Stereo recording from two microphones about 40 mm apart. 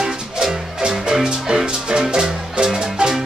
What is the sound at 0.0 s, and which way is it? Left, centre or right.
Music, centre.